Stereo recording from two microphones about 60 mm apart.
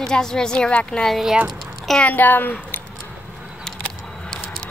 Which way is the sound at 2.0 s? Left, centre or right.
Left.